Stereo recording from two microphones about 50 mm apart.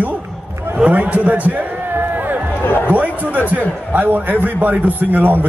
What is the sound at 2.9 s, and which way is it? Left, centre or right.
A man's voice, right.